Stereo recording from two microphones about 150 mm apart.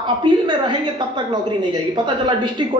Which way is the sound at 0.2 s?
30° right (ahead or behind).